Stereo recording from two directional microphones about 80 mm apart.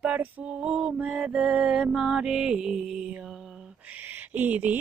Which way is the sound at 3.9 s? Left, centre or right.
Right.